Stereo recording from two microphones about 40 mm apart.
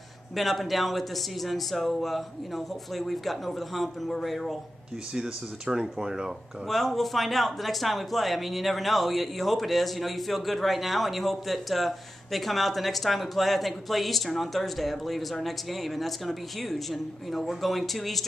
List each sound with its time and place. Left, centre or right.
0.4 s speech: centre
5.1 s speech: centre
6.7 s speech: centre